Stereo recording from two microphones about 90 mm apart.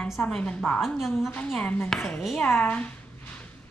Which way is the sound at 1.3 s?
15° left (ahead or behind).